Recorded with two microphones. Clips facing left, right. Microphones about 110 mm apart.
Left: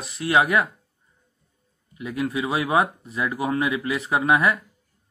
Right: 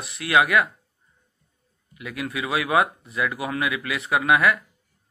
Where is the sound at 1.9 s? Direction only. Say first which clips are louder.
Left 4 dB; 30° left (ahead or behind).